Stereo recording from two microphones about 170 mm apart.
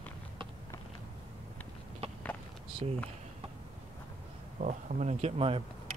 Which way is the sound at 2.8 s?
35° right (ahead or behind).